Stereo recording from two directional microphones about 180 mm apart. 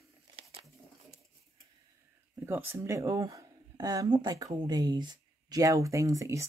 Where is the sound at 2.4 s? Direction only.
10° right (ahead or behind).